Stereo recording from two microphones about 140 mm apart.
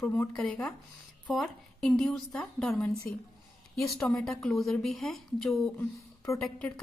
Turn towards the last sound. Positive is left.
turn(degrees=10)  # may be behind; listen again after turning